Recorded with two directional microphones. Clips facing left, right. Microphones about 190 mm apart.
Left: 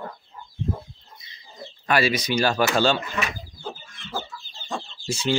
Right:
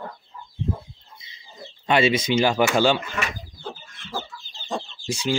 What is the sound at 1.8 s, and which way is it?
Speech, 25° right (ahead or behind).